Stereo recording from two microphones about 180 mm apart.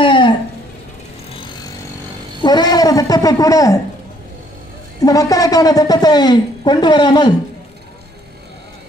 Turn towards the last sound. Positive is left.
turn(degrees=25)  # may be behind; listen again after turning